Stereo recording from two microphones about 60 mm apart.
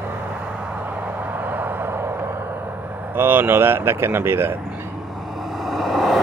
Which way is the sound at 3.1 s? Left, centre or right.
Right.